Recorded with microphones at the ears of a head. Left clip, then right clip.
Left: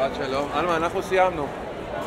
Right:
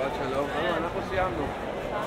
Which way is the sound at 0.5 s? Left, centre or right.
Left.